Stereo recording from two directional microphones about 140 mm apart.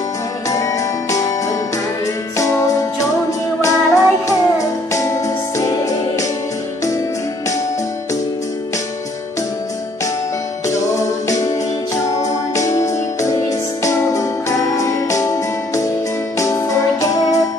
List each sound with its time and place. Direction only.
0.5 s music: 25° left (ahead or behind)
2.3 s music: 25° left (ahead or behind)
10.7 s music: 25° left (ahead or behind)